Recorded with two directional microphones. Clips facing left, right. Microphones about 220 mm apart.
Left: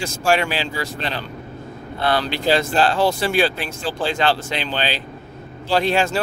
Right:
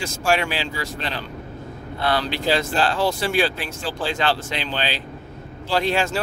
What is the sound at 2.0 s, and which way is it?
Speech, 30° left (ahead or behind).